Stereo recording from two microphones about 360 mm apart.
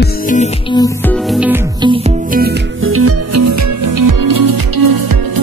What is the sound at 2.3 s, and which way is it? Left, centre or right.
Music, right.